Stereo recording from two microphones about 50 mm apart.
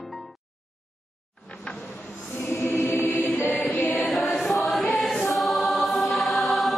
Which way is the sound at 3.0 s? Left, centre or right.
Left.